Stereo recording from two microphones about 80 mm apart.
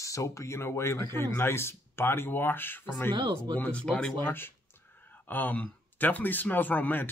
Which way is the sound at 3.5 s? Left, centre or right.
Left.